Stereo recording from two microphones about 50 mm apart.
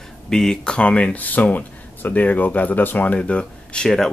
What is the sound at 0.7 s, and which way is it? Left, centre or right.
Speech, left.